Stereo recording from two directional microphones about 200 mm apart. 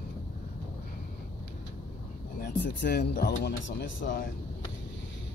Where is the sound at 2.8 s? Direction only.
50° left (ahead or behind).